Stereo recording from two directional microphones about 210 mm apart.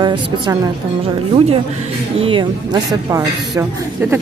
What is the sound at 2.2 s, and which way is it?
Speech, 25° right (ahead or behind).